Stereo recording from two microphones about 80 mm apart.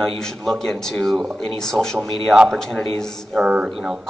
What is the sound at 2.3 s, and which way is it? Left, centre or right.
Speech, centre.